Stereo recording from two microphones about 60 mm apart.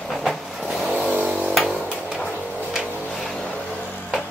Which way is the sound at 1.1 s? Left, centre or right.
Right.